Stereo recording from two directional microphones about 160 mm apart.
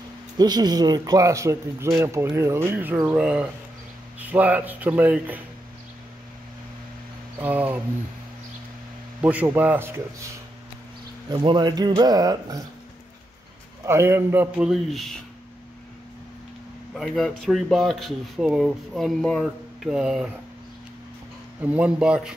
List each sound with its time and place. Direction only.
0.4 s speech: 25° right (ahead or behind)
7.3 s speech: 10° right (ahead or behind)
9.2 s speech: 10° right (ahead or behind)
11.3 s speech: 30° right (ahead or behind)
13.8 s speech: 15° right (ahead or behind); by 15.1 s centre (ahead or behind)
16.9 s speech: 5° left (ahead or behind)
21.6 s speech: 10° right (ahead or behind)